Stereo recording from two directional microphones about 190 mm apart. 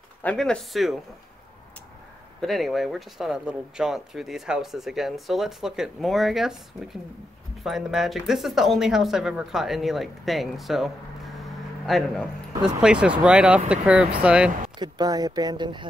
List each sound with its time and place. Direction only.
0.2 s speech: 5° left (ahead or behind)
2.4 s speech: centre (ahead or behind)
14.8 s speech: 20° right (ahead or behind)